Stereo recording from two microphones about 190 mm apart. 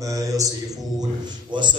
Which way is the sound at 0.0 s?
15° right (ahead or behind).